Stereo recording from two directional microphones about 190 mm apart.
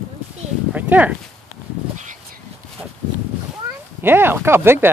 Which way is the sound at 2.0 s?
45° right (ahead or behind).